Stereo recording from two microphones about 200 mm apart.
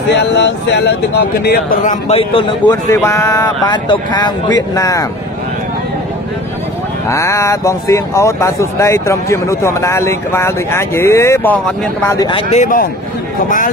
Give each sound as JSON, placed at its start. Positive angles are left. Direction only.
{"t": 0.1, "sound": "speech", "side_deg": 60}
{"t": 2.0, "sound": "speech", "side_deg": 30}
{"t": 2.9, "sound": "speech", "side_deg": 15}
{"t": 7.1, "sound": "speech", "side_deg": 15}